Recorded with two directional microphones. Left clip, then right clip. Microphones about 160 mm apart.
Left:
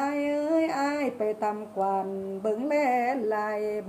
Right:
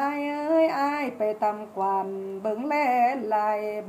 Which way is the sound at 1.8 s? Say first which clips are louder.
Right 2 dB; 15° left (ahead or behind).